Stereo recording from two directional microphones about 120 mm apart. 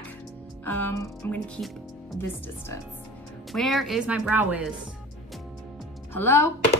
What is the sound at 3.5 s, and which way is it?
Speech, centre (ahead or behind).